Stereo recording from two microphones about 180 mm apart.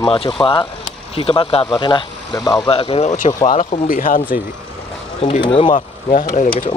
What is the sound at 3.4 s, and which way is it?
Speech, 45° left (ahead or behind).